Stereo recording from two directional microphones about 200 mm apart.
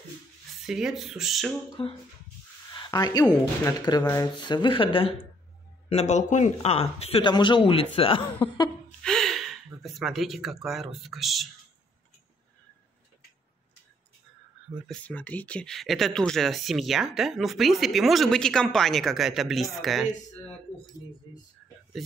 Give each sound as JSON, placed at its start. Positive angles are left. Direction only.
{"t": 0.7, "sound": "speech", "side_deg": 0}
{"t": 2.7, "sound": "speech", "side_deg": 20}
{"t": 9.0, "sound": "speech", "side_deg": 0}
{"t": 14.9, "sound": "speech", "side_deg": 5}